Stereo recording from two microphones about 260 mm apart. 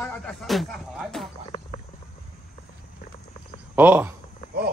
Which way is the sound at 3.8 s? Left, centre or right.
Centre.